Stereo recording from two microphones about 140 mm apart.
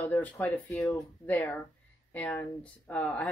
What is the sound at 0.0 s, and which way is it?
Speech, 10° left (ahead or behind).